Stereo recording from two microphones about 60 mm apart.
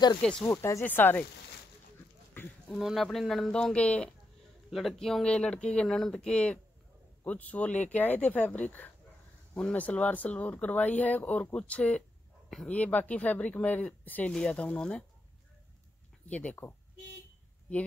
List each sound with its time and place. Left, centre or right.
0.2 s speech: centre
0.5 s speech: left
0.8 s speech: left
2.8 s speech: centre
3.5 s speech: centre
4.6 s speech: centre
4.9 s speech: centre
16.3 s speech: left
17.7 s speech: left